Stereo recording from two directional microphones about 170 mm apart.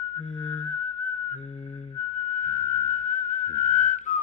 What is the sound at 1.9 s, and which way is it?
Whistling, 45° left (ahead or behind).